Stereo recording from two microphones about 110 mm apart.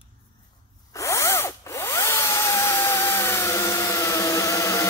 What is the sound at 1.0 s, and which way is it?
Drill, 25° left (ahead or behind).